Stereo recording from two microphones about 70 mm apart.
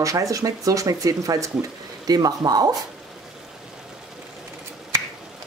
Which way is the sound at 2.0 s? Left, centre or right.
Right.